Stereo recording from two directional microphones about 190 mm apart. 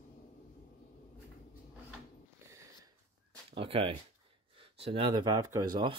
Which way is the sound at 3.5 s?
30° right (ahead or behind).